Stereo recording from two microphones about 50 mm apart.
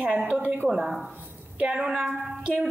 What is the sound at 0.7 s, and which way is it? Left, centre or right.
Speech, centre.